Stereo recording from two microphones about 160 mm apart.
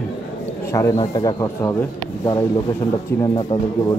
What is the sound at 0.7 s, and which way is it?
A man's voice, 20° left (ahead or behind).